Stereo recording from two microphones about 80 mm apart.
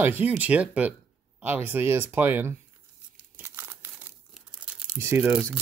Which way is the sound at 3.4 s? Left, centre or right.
Right.